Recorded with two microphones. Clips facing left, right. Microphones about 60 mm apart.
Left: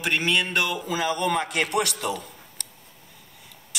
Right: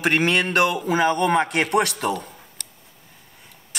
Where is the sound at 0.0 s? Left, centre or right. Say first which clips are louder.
Right 4 dB; right.